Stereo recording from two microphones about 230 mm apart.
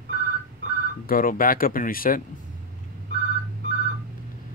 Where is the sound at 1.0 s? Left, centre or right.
Left.